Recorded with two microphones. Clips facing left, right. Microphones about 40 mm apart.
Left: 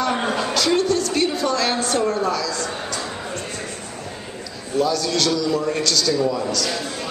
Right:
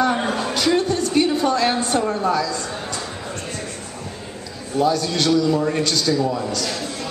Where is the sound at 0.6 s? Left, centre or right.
Centre.